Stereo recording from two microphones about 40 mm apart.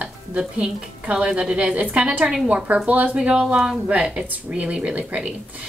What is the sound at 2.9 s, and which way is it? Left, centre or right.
Speech, right.